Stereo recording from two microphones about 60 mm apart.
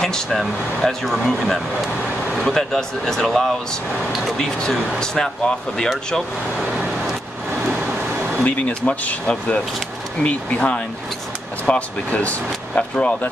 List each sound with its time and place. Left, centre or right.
0.0 s speech: centre
4.9 s speech: centre
6.8 s vehicle: centre
8.4 s speech: left